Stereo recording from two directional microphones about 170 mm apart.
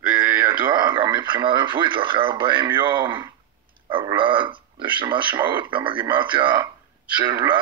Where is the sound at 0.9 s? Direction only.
30° right (ahead or behind).